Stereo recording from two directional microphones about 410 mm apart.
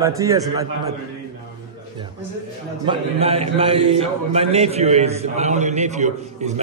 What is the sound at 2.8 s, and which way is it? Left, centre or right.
A man's voice, centre.